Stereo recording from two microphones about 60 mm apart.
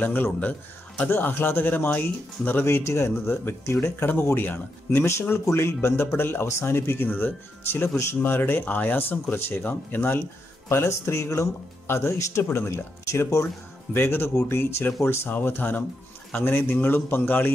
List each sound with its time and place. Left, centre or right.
0.0 s speech: left
2.6 s speech: left
3.3 s speech: left
10.7 s speech: left
13.0 s speech: left
13.9 s speech: left